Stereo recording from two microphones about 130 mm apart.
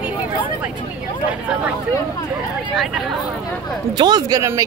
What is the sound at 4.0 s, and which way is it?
Speech, 30° right (ahead or behind).